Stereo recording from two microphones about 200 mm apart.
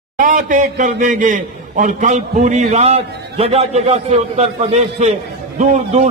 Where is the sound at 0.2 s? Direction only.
40° right (ahead or behind).